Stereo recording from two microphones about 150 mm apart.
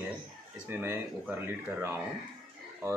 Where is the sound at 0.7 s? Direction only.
15° right (ahead or behind).